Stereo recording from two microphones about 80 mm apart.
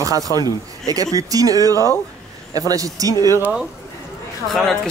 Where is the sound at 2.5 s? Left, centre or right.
Right.